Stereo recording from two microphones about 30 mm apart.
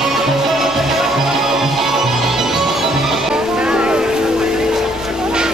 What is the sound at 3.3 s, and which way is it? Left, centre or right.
Music, right.